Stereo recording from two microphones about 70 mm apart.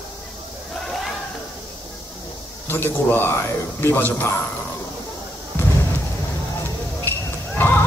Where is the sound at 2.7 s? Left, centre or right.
Left.